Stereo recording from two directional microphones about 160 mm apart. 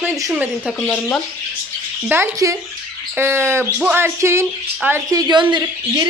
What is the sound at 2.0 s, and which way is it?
Speech, 15° right (ahead or behind).